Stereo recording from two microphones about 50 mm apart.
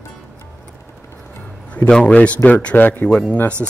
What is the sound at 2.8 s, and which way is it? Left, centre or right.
Speech, left.